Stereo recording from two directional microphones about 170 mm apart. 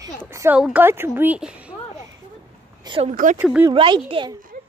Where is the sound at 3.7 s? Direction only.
30° right (ahead or behind).